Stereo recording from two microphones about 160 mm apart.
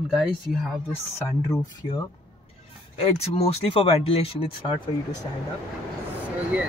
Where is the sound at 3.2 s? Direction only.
40° left (ahead or behind).